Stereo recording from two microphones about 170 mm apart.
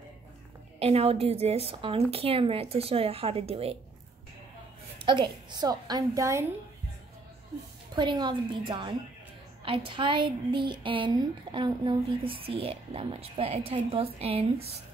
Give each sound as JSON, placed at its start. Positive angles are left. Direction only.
{"t": 0.7, "sound": "speech", "side_deg": -35}
{"t": 5.0, "sound": "a woman's voice", "side_deg": -30}
{"t": 7.9, "sound": "a woman's voice", "side_deg": -25}